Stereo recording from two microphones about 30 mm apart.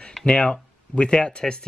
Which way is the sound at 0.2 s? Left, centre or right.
Left.